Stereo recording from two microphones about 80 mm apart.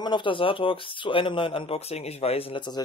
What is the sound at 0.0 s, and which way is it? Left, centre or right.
Speech, left.